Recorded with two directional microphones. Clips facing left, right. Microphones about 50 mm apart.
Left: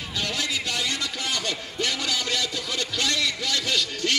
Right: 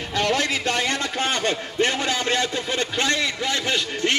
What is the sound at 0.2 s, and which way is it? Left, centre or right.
A man's voice, right.